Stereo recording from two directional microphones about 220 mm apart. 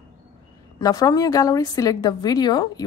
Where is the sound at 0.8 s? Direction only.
15° left (ahead or behind).